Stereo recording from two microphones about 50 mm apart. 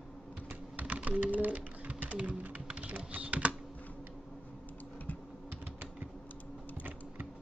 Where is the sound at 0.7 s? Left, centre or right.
Right.